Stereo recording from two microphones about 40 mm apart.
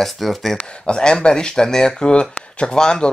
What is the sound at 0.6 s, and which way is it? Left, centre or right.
Speech, left.